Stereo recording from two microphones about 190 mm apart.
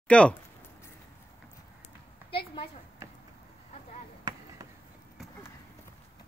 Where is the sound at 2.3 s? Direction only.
30° left (ahead or behind).